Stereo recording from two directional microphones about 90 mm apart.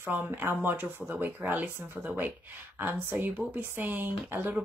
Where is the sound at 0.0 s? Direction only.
25° right (ahead or behind).